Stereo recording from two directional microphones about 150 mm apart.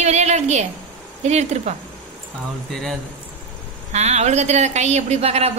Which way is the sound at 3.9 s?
50° right (ahead or behind).